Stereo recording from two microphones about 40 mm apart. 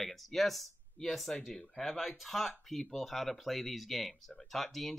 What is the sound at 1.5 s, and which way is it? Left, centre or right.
Speech, centre.